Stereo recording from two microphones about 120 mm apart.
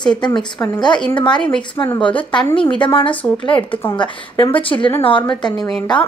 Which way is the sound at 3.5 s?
10° left (ahead or behind).